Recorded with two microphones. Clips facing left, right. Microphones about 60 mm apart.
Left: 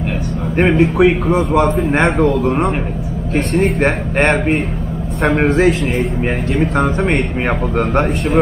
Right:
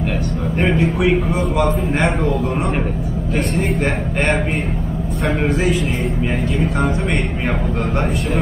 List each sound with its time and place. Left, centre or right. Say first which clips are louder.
0.6 s a man's voice: left 6 dB; left
2.0 s a man's voice: left 7 dB; left
3.8 s a man's voice: left 5 dB; left
5.5 s a man's voice: left 6 dB; left